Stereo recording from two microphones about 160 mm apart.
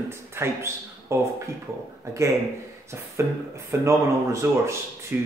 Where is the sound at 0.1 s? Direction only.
15° right (ahead or behind).